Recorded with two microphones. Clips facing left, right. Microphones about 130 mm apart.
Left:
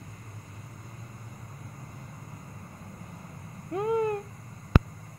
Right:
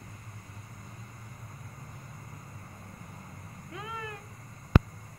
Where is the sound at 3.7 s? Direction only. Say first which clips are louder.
Left 15 dB; 50° left (ahead or behind).